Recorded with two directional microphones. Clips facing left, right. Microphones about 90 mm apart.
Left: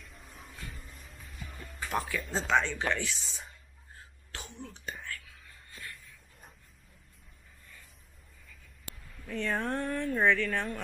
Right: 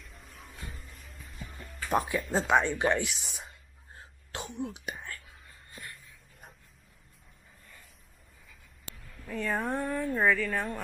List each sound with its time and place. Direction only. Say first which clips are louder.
0.0 s a sound: even; centre (ahead or behind)
0.7 s music: even; centre (ahead or behind)
1.9 s speech: right 5 dB; 20° right (ahead or behind)
4.6 s speech: right 6 dB; 15° right (ahead or behind)
4.9 s whispering: even; 25° right (ahead or behind)
9.3 s speech: right 1 dB; 5° right (ahead or behind)